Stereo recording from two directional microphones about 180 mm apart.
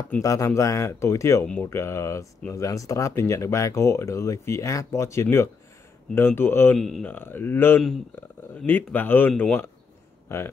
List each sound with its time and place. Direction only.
0.2 s speech: 20° left (ahead or behind)
10.2 s speech: 15° left (ahead or behind)